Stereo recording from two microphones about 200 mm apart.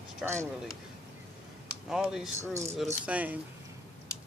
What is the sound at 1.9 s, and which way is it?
A man's voice, centre (ahead or behind).